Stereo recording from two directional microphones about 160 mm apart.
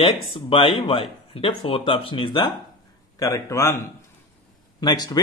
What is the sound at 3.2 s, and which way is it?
Speech, 20° left (ahead or behind).